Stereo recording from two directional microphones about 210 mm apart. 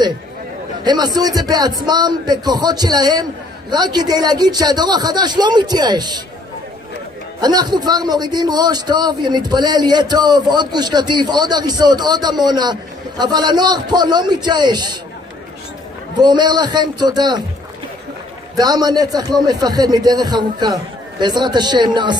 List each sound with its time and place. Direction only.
0.8 s a man's voice: 20° right (ahead or behind)
7.3 s a man's voice: 20° right (ahead or behind)
16.2 s a man's voice: 20° right (ahead or behind)
18.6 s a man's voice: 20° right (ahead or behind)